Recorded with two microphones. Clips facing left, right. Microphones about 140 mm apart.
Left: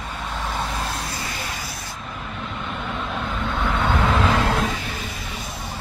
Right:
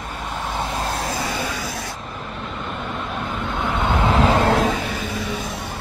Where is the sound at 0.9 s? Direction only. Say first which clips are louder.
Right 5 dB; 60° right (ahead or behind).